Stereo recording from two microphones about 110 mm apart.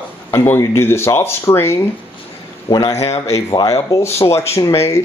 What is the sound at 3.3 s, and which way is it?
Speech, 25° left (ahead or behind).